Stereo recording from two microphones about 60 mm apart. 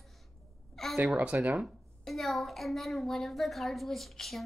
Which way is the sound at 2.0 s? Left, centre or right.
Centre.